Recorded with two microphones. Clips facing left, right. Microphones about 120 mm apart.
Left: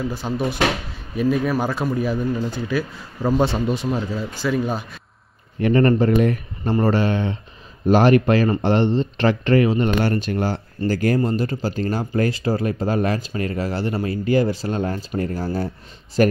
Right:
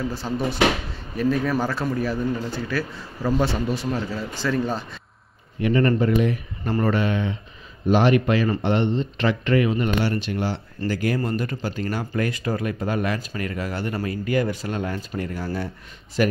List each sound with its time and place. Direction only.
0.1 s speech: 15° left (ahead or behind)
5.6 s speech: 40° left (ahead or behind)
6.6 s speech: 30° left (ahead or behind)
9.9 s speech: 45° left (ahead or behind)